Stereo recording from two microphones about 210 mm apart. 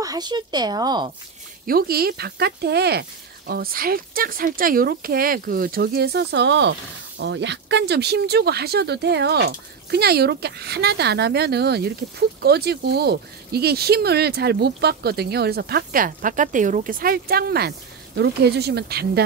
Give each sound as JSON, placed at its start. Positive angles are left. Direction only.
{"t": 0.0, "sound": "speech", "side_deg": -20}
{"t": 1.7, "sound": "speech", "side_deg": -45}